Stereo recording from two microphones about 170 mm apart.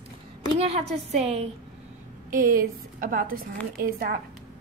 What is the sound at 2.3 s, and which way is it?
A woman's voice, 55° right (ahead or behind).